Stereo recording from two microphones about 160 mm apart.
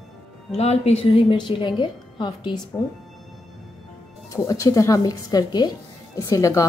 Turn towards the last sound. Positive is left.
turn(degrees=20)  # may be behind; listen again after turning